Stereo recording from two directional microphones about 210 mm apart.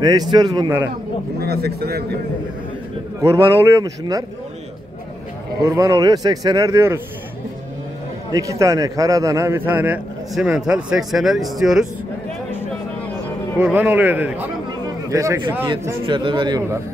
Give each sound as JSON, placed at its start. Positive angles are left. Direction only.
{"t": 0.0, "sound": "a man's voice", "side_deg": -20}
{"t": 1.4, "sound": "speech", "side_deg": -50}
{"t": 3.2, "sound": "a man's voice", "side_deg": -15}
{"t": 5.6, "sound": "a man's voice", "side_deg": -15}
{"t": 8.3, "sound": "a man's voice", "side_deg": -15}
{"t": 13.6, "sound": "a man's voice", "side_deg": -10}
{"t": 15.6, "sound": "a man's voice", "side_deg": -20}